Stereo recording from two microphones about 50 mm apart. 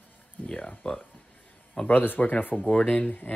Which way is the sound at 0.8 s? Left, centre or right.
Left.